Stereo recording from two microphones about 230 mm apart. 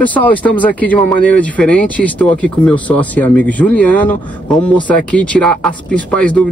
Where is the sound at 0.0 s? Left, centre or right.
Centre.